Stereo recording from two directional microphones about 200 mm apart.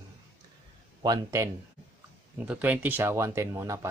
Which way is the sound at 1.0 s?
15° right (ahead or behind).